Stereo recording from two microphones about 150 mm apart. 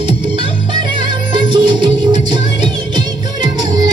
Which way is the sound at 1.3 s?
30° right (ahead or behind).